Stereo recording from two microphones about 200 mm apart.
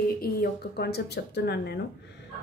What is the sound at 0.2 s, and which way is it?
A woman's voice, 50° left (ahead or behind).